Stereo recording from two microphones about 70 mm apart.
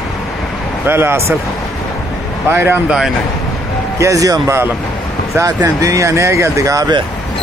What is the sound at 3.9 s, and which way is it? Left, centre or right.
Speech, right.